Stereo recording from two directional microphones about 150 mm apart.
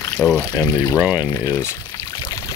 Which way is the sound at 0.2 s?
10° left (ahead or behind).